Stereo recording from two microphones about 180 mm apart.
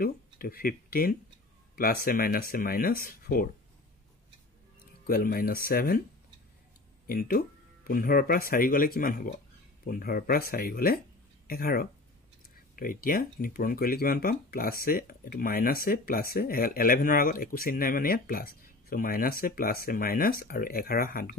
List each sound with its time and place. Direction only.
0.0 s speech: 55° left (ahead or behind)
5.0 s speech: 55° left (ahead or behind)
7.1 s speech: 55° left (ahead or behind)